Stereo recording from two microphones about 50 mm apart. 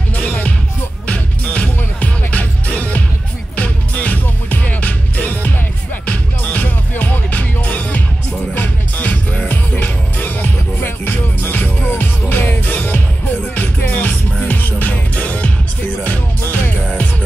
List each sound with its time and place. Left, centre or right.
0.1 s music: left
11.9 s music: left